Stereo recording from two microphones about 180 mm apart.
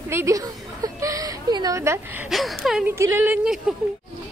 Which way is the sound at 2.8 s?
15° right (ahead or behind).